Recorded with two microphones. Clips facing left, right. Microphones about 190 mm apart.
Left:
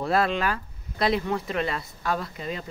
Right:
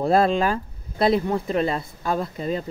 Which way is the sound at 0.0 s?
30° right (ahead or behind).